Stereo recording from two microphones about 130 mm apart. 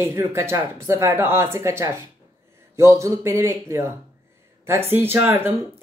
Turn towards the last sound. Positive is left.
turn(degrees=-15)  # may be behind; listen again after turning